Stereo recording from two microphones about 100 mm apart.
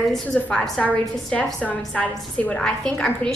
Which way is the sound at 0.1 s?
5° left (ahead or behind).